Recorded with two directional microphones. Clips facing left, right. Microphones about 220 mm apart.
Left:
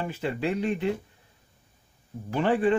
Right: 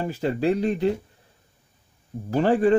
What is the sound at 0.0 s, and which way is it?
Speech, 35° right (ahead or behind).